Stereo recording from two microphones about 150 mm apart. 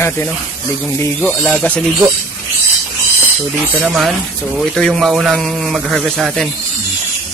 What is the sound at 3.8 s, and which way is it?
A man's voice, centre (ahead or behind).